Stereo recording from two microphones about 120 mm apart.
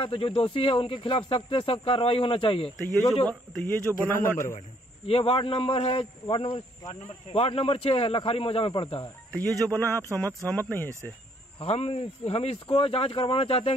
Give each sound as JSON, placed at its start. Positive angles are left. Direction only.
{"t": 0.0, "sound": "speech", "side_deg": 50}
{"t": 3.3, "sound": "speech", "side_deg": 15}
{"t": 4.6, "sound": "speech", "side_deg": 55}
{"t": 9.3, "sound": "speech", "side_deg": 10}
{"t": 11.6, "sound": "speech", "side_deg": 60}